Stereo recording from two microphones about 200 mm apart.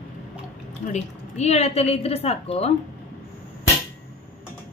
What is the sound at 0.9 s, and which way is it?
A woman's voice, 35° left (ahead or behind).